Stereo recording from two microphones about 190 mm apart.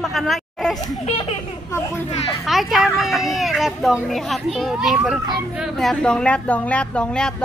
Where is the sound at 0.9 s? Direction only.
30° left (ahead or behind).